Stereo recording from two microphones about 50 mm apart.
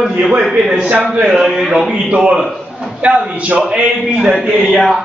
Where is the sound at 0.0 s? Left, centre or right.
Centre.